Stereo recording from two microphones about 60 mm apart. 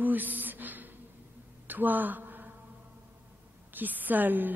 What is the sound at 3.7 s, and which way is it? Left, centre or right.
Speech, right.